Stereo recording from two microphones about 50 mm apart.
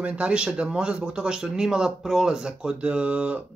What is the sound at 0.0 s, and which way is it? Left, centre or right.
Speech, right.